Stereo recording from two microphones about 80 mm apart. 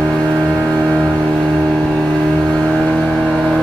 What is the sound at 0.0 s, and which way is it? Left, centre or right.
Vehicle, centre.